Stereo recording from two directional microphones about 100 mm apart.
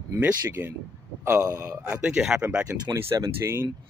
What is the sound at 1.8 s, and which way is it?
Speech, 10° right (ahead or behind).